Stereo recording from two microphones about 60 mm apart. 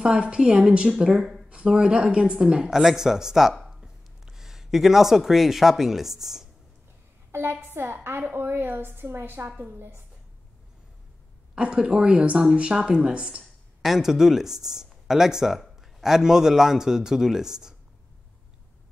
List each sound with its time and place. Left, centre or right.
0.0 s speech: centre
7.2 s a sound: right
7.6 s a woman's voice: right
11.5 s speech: centre
13.4 s speech: centre